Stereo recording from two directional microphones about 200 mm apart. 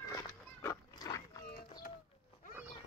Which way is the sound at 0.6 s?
20° left (ahead or behind).